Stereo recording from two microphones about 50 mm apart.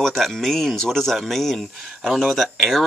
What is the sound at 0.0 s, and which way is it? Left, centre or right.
Speech, centre.